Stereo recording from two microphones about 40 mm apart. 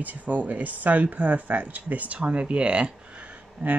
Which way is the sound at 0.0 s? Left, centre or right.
Right.